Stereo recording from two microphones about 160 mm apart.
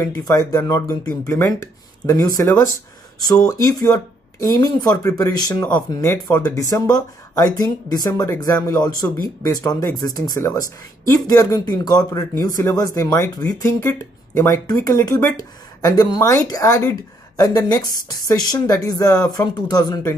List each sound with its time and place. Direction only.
0.0 s speech: 20° left (ahead or behind)